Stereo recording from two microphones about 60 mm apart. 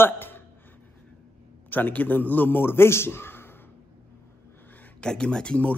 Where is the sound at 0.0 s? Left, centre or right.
Left.